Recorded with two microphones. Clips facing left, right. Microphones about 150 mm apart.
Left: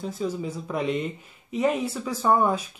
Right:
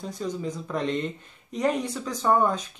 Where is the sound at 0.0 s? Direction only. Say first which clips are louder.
Left 2 dB; 5° left (ahead or behind).